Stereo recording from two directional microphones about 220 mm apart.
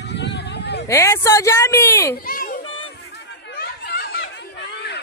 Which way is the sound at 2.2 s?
40° left (ahead or behind).